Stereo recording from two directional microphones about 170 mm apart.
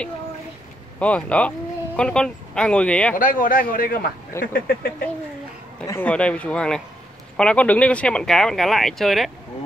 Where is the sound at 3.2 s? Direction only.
55° left (ahead or behind).